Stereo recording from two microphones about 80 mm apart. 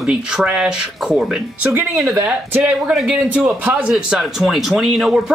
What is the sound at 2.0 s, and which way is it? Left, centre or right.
Speech, right.